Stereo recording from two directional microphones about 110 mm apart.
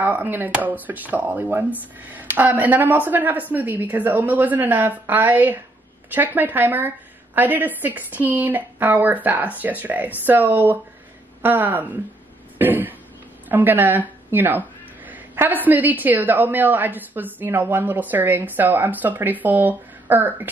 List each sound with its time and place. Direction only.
0.0 s a woman's voice: 15° right (ahead or behind)
12.5 s throat clearing: 15° right (ahead or behind)
13.5 s a woman's voice: 15° right (ahead or behind)